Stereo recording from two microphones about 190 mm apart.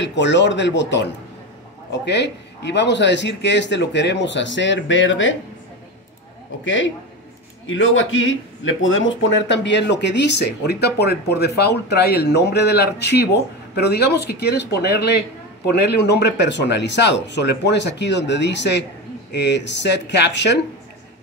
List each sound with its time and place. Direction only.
0.0 s a man's voice: 70° left (ahead or behind)
6.6 s a man's voice: 80° left
7.6 s a man's voice: 90° left; by 20.5 s 65° left (ahead or behind)